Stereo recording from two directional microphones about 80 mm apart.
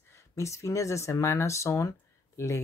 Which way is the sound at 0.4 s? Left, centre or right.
Left.